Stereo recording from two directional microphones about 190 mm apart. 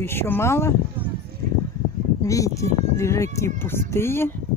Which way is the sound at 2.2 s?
15° left (ahead or behind).